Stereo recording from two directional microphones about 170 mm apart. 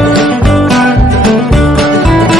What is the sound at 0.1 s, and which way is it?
Music, centre (ahead or behind).